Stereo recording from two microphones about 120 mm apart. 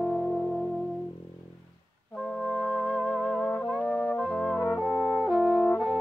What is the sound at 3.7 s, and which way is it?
Brass instrument, 5° left (ahead or behind).